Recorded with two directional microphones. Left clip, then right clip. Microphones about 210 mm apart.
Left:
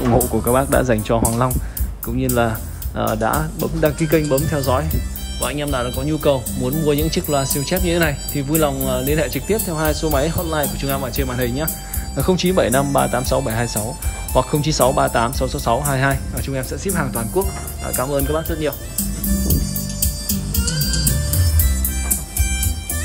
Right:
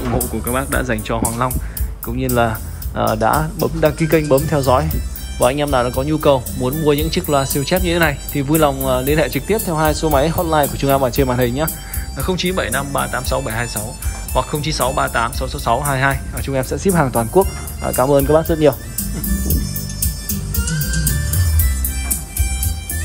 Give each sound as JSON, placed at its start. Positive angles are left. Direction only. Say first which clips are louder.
{"t": 0.5, "sound": "speech", "louder": "left 3 dB", "side_deg": 20}
{"t": 4.2, "sound": "speech", "louder": "right 4 dB", "side_deg": 0}
{"t": 19.1, "sound": "music", "louder": "left 1 dB", "side_deg": 0}
{"t": 20.2, "sound": "music", "louder": "left 2 dB", "side_deg": 55}